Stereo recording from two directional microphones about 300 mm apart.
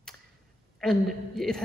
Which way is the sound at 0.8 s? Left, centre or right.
Centre.